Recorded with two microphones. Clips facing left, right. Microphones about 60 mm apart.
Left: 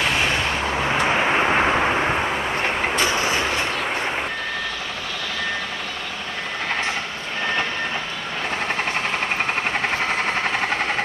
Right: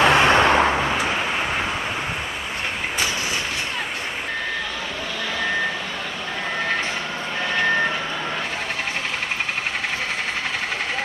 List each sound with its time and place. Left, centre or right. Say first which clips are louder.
0.0 s vehicle: right 6 dB; right
1.0 s vehicle: left 4 dB; left